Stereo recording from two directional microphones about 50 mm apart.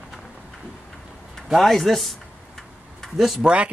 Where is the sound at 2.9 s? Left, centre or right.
Centre.